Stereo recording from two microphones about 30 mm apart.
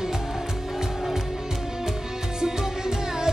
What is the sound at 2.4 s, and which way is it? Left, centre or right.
Music, right.